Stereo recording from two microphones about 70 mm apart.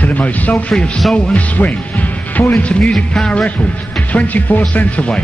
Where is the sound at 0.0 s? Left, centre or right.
Left.